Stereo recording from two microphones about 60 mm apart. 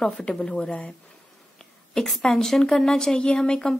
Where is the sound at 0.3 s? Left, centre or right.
Centre.